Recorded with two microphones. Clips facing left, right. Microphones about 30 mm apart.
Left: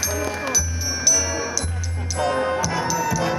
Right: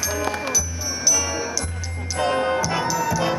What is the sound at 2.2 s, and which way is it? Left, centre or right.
Music, centre.